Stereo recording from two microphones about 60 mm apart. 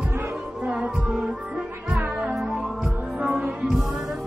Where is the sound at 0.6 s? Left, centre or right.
Centre.